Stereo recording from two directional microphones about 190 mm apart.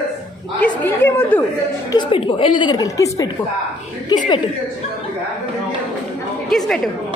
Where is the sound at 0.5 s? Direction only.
10° left (ahead or behind).